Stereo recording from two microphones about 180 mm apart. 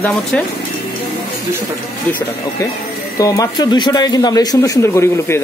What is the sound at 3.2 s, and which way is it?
Speech, 20° left (ahead or behind).